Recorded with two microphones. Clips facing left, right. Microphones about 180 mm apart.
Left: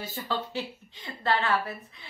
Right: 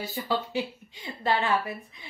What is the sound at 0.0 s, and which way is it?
A woman's voice, 10° right (ahead or behind).